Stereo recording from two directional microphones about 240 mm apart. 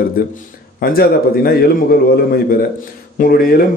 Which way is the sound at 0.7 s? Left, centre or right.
Left.